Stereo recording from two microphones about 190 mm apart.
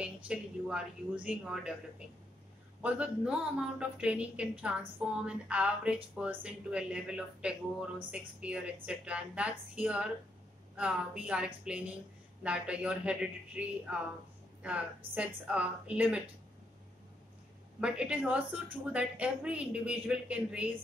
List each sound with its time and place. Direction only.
0.0 s a woman's voice: 5° right (ahead or behind)
2.8 s a woman's voice: 5° right (ahead or behind)
15.1 s a woman's voice: 5° right (ahead or behind)
17.7 s a woman's voice: 5° right (ahead or behind)